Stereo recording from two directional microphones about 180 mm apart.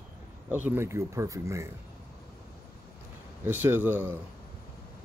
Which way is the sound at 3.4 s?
10° right (ahead or behind).